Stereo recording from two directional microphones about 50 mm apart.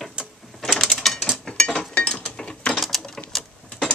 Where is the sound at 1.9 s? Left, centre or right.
Left.